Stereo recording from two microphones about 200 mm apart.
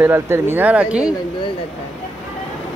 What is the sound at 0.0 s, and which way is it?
Speech, 10° right (ahead or behind).